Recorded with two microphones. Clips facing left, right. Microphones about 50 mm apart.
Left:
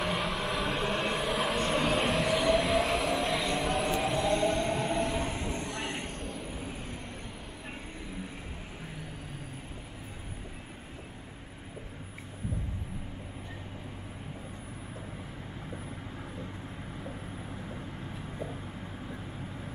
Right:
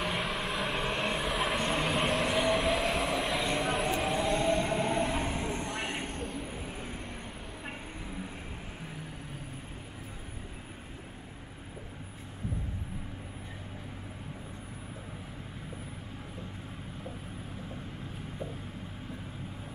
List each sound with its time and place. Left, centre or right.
0.0 s vehicle: centre
4.0 s music: centre
4.9 s train: centre